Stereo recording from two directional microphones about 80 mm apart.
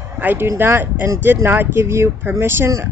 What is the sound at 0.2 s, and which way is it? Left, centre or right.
Speech, right.